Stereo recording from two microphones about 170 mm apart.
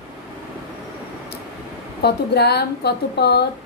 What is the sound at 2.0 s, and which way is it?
A woman's voice, 75° left (ahead or behind).